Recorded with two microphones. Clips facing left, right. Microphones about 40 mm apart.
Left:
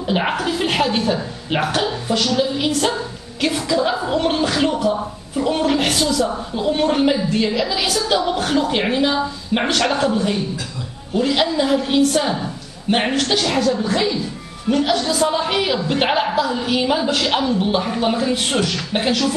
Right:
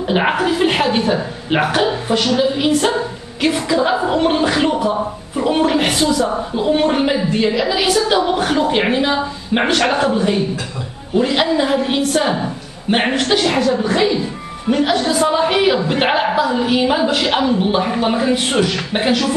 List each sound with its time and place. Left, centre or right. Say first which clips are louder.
0.0 s a woman's voice: right 4 dB; centre
11.1 s a woman's voice: right 3 dB; centre